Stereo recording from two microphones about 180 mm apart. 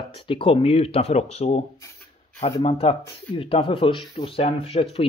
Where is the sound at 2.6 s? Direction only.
30° left (ahead or behind).